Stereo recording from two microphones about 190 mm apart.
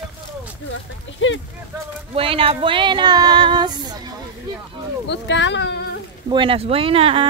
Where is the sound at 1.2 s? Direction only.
80° left.